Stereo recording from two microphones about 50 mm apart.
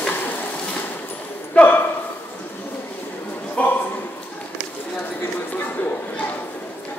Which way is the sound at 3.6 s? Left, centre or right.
Left.